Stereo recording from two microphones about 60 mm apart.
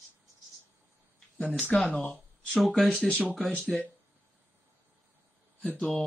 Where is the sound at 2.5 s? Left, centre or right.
Centre.